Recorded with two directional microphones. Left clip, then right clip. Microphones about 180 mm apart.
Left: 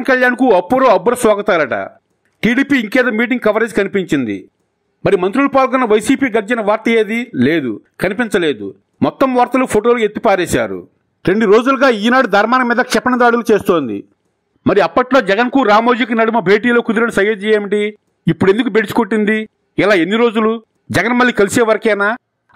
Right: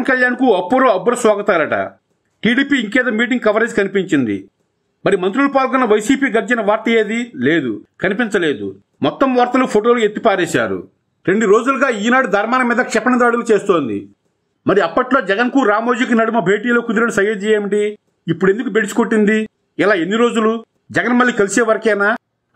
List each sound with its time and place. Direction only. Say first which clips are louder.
0.0 s a man's voice: left 2 dB; 35° left (ahead or behind)
11.2 s a man's voice: left 2 dB; 45° left (ahead or behind)
14.7 s a man's voice: left 2 dB; 40° left (ahead or behind)